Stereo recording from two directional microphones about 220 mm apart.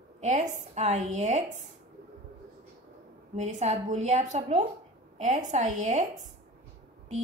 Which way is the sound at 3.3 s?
30° right (ahead or behind).